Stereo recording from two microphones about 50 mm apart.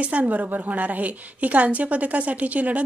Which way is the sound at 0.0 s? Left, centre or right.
Right.